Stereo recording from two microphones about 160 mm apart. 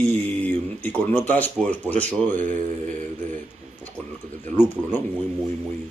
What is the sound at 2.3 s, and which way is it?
Mantra, 50° right (ahead or behind).